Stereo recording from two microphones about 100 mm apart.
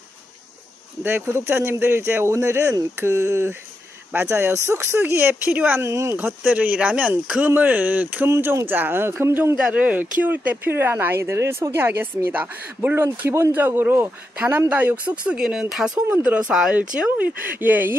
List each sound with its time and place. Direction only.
1.0 s speech: 25° right (ahead or behind)
6.1 s speech: 15° right (ahead or behind)